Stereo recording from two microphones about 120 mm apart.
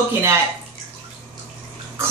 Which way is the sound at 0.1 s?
20° right (ahead or behind).